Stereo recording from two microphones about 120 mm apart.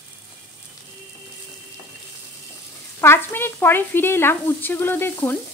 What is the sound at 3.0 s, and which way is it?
Speech, 20° left (ahead or behind).